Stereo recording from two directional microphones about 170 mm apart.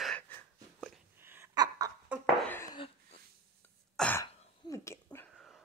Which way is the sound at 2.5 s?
15° left (ahead or behind).